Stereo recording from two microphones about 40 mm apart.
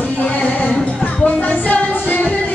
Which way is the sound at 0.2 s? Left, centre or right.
Left.